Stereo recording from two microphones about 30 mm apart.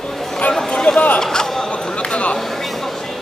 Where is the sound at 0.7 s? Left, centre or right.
Left.